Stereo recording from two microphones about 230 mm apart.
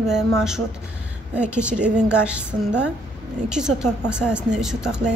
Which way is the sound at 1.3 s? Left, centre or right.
Centre.